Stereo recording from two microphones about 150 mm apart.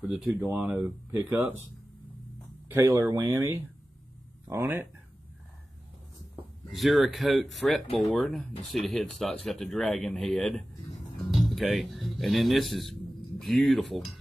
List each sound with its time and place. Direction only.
0.0 s speech: 5° right (ahead or behind)
0.8 s speech: 15° right (ahead or behind)
2.7 s speech: 20° right (ahead or behind)
6.7 s speech: centre (ahead or behind)